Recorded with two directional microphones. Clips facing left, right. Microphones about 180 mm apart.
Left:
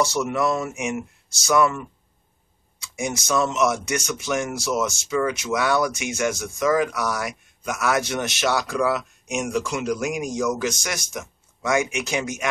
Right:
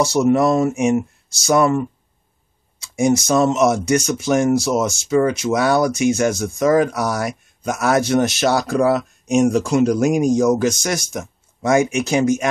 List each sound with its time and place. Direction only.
0.0 s speech: 35° right (ahead or behind)
3.0 s speech: 35° right (ahead or behind)